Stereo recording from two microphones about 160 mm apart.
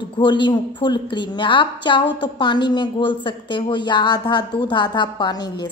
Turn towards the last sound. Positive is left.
turn(degrees=25)  # may be behind; listen again after turning